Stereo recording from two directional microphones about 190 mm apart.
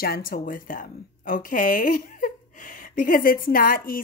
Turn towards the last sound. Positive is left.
turn(degrees=50)  # may be behind; listen again after turning